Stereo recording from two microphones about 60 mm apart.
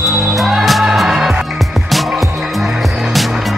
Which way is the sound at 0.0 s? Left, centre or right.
Centre.